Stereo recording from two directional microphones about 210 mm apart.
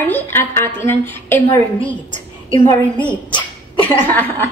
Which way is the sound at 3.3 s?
20° left (ahead or behind).